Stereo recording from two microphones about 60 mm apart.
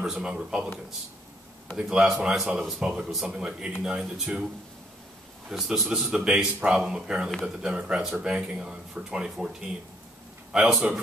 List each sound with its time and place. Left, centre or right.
0.0 s speech: centre
5.5 s a man's voice: centre
10.5 s speech: centre